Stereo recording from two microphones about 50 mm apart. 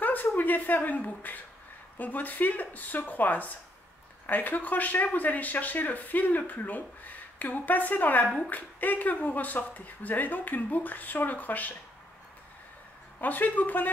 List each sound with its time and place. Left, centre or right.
0.0 s a sound: left
0.4 s speech: left
13.2 s speech: left